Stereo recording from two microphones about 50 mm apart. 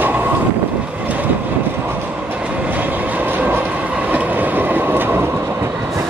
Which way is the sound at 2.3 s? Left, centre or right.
Right.